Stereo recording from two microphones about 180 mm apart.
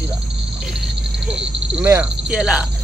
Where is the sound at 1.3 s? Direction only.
10° right (ahead or behind).